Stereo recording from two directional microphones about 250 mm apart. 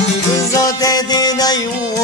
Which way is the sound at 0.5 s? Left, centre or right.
Centre.